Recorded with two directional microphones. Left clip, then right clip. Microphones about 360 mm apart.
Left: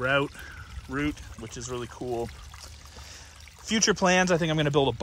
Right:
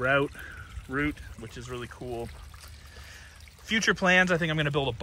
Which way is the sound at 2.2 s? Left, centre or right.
Centre.